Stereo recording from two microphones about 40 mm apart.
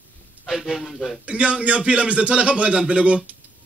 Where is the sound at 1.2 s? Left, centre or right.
Right.